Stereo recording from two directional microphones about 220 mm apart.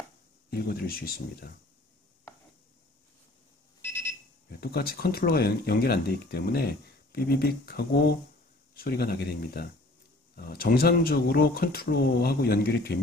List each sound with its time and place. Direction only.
0.5 s speech: 45° left (ahead or behind)
4.6 s speech: 45° left (ahead or behind)